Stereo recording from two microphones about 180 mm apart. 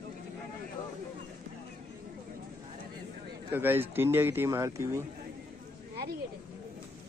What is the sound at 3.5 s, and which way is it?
Speech, 10° right (ahead or behind).